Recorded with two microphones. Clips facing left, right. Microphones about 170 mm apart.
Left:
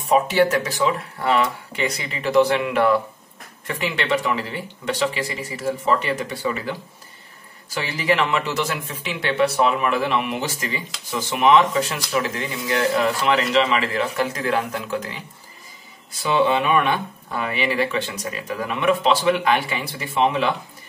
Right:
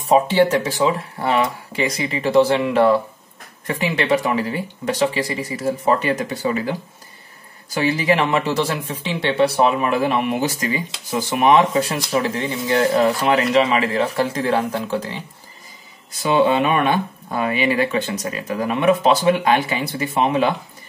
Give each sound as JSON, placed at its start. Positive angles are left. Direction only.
{"t": 0.1, "sound": "speech", "side_deg": -30}
{"t": 8.2, "sound": "speech", "side_deg": -35}
{"t": 16.2, "sound": "speech", "side_deg": -45}